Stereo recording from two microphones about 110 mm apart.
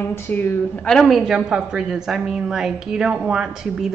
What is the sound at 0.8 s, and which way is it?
A woman's voice, 5° left (ahead or behind).